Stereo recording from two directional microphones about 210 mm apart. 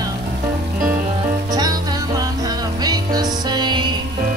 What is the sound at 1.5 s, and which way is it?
Music, 20° right (ahead or behind).